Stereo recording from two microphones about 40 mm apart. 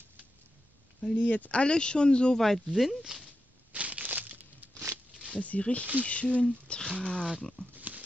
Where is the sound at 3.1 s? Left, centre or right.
Centre.